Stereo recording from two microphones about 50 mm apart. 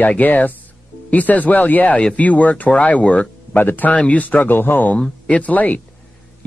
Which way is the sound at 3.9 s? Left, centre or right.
Left.